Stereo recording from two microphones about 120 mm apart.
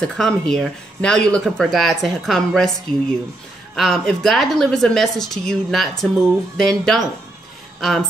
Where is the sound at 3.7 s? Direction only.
5° left (ahead or behind).